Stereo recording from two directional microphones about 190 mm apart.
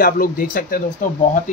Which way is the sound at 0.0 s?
50° left (ahead or behind).